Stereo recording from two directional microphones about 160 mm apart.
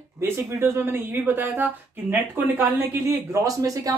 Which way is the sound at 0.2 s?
15° right (ahead or behind).